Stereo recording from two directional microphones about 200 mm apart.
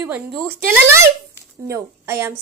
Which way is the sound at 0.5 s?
45° right (ahead or behind).